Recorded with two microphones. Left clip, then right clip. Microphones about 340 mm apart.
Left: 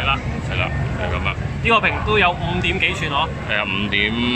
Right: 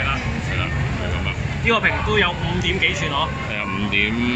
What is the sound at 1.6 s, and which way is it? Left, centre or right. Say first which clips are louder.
Speech: left 2 dB; centre.